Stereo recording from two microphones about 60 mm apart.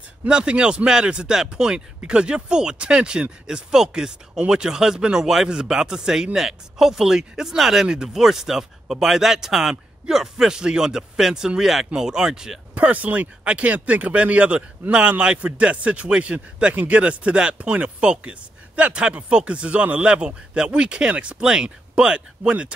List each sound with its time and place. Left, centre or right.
0.3 s speech: centre
12.7 s speech: right